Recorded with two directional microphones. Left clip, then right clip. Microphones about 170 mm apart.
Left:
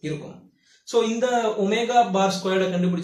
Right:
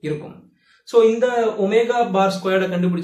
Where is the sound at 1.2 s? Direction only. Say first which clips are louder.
Right 3 dB; 20° right (ahead or behind).